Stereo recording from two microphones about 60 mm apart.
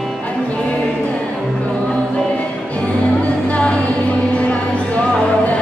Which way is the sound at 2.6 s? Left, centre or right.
Left.